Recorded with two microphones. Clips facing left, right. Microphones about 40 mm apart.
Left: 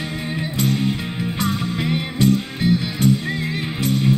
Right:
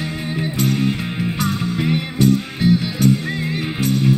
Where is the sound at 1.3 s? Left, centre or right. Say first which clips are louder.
Even; left.